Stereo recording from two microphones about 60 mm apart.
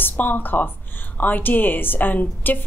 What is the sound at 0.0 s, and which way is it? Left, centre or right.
A woman's voice, left.